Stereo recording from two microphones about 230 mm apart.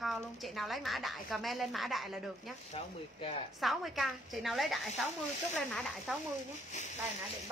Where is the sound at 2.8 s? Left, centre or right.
Left.